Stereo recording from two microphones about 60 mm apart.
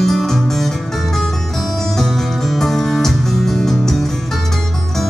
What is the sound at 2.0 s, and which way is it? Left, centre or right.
Music, centre.